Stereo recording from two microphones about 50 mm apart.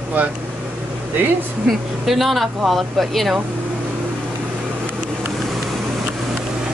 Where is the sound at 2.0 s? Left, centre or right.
Centre.